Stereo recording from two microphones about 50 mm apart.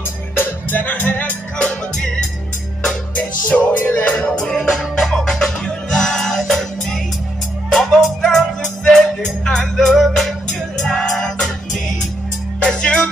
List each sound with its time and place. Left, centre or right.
0.4 s music: left
1.6 s music: centre
3.2 s music: left
3.9 s music: left; by 10.2 s centre
10.8 s music: centre
12.6 s music: centre